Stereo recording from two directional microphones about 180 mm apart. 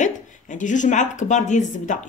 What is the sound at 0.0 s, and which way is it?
Speech, 45° left (ahead or behind).